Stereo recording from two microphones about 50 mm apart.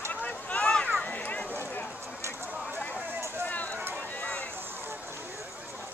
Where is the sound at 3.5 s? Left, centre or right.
Left.